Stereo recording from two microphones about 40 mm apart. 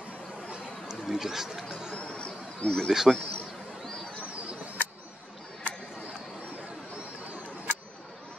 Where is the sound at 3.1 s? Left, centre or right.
Centre.